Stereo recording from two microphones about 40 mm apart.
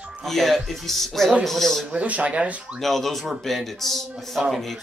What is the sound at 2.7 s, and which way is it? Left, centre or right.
Speech, centre.